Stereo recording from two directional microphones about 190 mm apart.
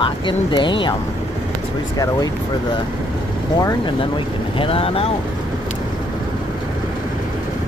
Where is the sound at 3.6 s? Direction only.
20° left (ahead or behind).